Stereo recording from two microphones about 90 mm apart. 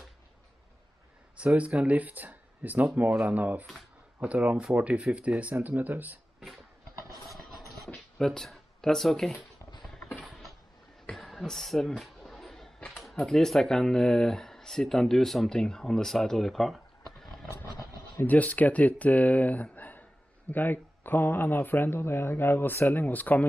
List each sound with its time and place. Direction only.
1.4 s speech: 15° right (ahead or behind)
7.2 s a sound: centre (ahead or behind)
11.1 s speech: centre (ahead or behind)
18.2 s speech: 15° left (ahead or behind)